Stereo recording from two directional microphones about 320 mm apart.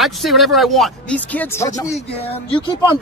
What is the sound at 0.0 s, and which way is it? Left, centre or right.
Speech, centre.